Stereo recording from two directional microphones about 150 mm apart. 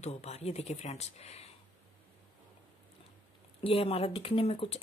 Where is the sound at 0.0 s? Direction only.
45° left (ahead or behind).